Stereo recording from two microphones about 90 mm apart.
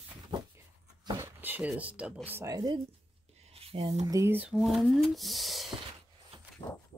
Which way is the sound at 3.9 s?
40° right (ahead or behind).